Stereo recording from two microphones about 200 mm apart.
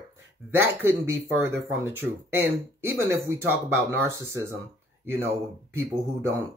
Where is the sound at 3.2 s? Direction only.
15° right (ahead or behind).